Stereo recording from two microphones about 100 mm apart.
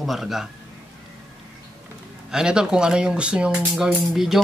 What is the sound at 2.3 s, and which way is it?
Speech, 5° right (ahead or behind).